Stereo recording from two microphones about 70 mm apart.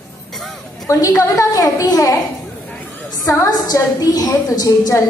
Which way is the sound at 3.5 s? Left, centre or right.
Left.